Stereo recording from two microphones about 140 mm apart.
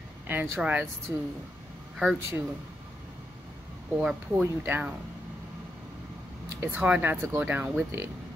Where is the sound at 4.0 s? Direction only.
5° right (ahead or behind).